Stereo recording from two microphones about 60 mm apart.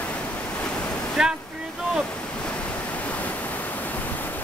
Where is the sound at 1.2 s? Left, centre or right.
Centre.